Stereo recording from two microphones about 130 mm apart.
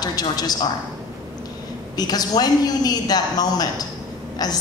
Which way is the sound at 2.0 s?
30° left (ahead or behind).